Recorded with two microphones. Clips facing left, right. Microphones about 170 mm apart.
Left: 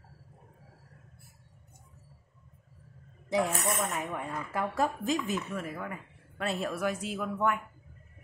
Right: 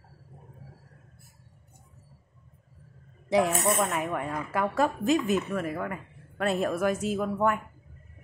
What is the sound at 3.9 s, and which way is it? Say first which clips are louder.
Speech: right 5 dB; 75° right (ahead or behind).